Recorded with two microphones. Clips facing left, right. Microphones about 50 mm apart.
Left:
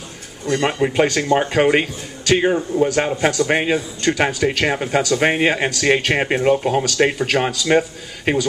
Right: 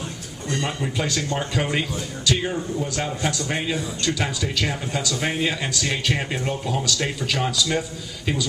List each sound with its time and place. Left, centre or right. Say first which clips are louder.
0.5 s speech: left 8 dB; left